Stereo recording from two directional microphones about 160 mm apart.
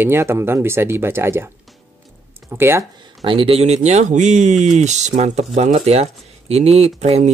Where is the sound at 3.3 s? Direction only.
35° right (ahead or behind).